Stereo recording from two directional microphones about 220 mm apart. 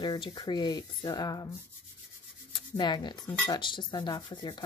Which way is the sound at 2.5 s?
20° left (ahead or behind).